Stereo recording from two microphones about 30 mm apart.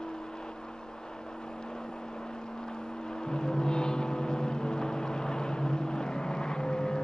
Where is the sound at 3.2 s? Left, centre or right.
Left.